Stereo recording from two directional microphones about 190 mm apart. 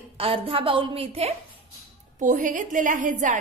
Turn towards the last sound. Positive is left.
turn(degrees=-40)  # may be behind; listen again after turning